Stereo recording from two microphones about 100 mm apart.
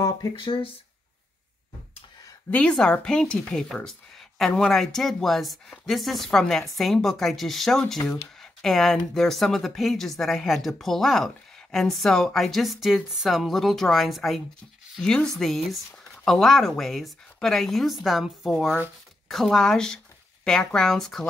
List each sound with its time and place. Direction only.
0.4 s speech: 55° left (ahead or behind)
2.5 s speech: 10° left (ahead or behind)
8.0 s speech: 30° left (ahead or behind)
8.4 s speech: 5° left (ahead or behind)